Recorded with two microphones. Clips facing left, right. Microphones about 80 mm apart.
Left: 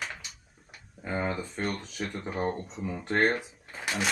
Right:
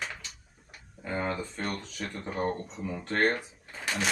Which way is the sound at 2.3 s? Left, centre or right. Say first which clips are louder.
Right 2 dB; centre.